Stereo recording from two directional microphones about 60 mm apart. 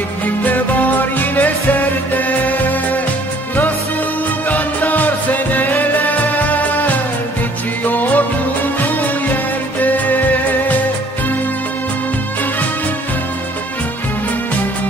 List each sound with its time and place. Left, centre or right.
0.4 s music: left
4.5 s music: left